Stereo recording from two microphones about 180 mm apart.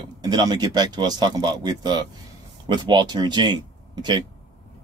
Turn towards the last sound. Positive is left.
turn(degrees=-25)  # may be behind; listen again after turning